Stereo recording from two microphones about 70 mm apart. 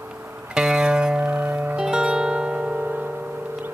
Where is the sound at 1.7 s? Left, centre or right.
Centre.